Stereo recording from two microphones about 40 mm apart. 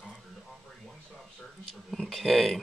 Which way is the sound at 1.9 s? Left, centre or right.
Centre.